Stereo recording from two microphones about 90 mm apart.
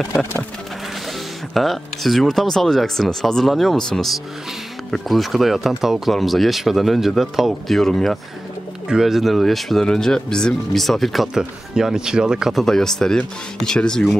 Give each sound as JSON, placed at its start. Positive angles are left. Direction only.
{"t": 0.2, "sound": "music", "side_deg": 20}
{"t": 1.5, "sound": "speech", "side_deg": 0}
{"t": 12.6, "sound": "speech", "side_deg": 5}